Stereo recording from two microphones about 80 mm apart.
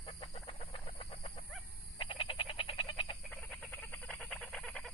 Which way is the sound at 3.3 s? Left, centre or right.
Centre.